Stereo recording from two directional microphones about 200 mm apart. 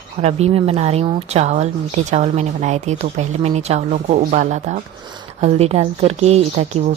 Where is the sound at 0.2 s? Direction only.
30° right (ahead or behind).